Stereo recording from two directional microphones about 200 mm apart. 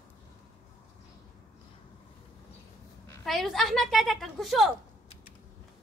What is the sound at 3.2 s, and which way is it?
A child's voice, centre (ahead or behind).